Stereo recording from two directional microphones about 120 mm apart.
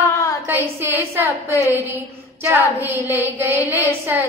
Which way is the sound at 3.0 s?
15° right (ahead or behind).